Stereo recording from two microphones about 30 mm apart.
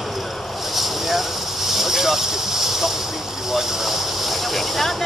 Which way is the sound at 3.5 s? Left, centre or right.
Centre.